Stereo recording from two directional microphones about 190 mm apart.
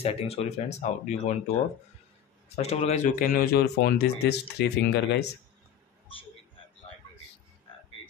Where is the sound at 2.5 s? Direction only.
35° left (ahead or behind).